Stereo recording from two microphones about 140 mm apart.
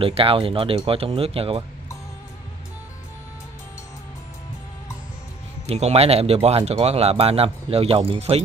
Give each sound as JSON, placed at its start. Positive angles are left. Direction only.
{"t": 0.0, "sound": "speech", "side_deg": -40}
{"t": 5.7, "sound": "speech", "side_deg": -50}